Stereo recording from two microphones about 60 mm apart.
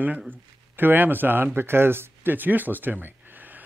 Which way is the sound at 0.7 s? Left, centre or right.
Right.